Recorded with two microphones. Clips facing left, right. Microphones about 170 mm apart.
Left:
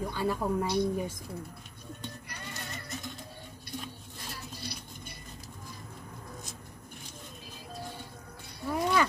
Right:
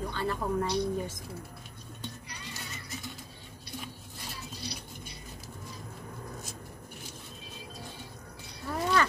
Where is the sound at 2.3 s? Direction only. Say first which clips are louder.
Left 2 dB; 55° left (ahead or behind).